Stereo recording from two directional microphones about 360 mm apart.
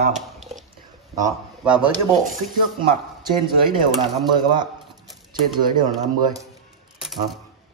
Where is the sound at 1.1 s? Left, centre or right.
Centre.